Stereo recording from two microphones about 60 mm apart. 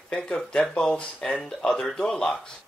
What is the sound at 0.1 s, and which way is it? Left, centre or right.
Speech, centre.